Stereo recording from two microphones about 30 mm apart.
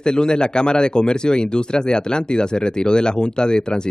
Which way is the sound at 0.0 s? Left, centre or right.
Left.